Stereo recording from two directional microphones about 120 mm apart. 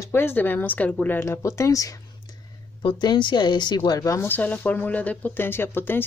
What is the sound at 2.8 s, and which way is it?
Speech, 40° left (ahead or behind).